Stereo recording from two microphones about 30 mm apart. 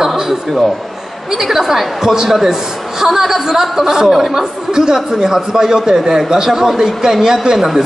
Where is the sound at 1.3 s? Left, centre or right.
Centre.